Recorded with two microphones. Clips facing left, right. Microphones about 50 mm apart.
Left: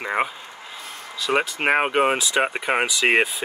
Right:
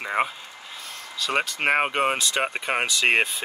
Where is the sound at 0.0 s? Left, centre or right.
Centre.